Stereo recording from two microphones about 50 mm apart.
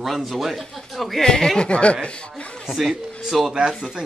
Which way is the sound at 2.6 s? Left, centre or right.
Centre.